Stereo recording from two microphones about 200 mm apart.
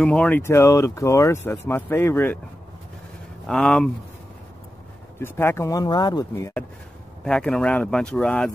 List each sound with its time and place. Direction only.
0.0 s speech: 5° left (ahead or behind)
3.4 s speech: 5° left (ahead or behind)
5.2 s speech: 10° left (ahead or behind)